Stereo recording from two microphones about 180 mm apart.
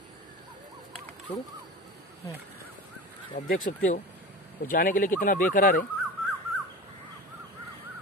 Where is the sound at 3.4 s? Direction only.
50° left (ahead or behind).